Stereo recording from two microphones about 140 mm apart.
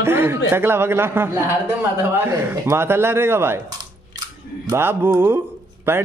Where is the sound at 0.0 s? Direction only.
15° right (ahead or behind).